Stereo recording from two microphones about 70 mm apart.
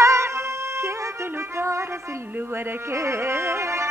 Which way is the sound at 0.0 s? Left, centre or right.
Right.